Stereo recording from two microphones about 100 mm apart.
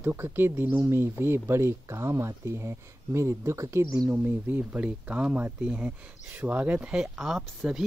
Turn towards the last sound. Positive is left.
turn(degrees=-5)  # may be behind; listen again after turning